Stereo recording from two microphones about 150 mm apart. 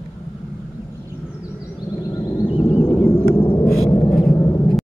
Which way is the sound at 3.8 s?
25° left (ahead or behind).